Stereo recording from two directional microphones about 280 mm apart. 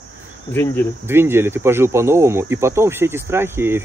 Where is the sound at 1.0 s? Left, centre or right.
Centre.